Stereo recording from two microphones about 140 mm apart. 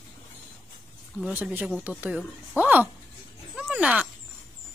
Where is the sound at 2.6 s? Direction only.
10° right (ahead or behind).